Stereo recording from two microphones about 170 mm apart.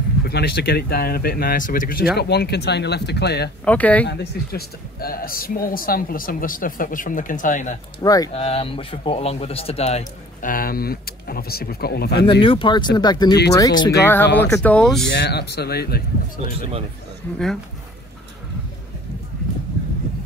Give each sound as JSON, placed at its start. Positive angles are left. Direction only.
{"t": 0.2, "sound": "speech", "side_deg": 70}
{"t": 2.1, "sound": "speech", "side_deg": 75}
{"t": 3.6, "sound": "speech", "side_deg": 10}
{"t": 4.1, "sound": "speech", "side_deg": 70}
{"t": 8.0, "sound": "speech", "side_deg": 20}
{"t": 8.3, "sound": "speech", "side_deg": 35}
{"t": 10.5, "sound": "speech", "side_deg": 60}
{"t": 12.3, "sound": "speech", "side_deg": 30}
{"t": 15.0, "sound": "speech", "side_deg": 75}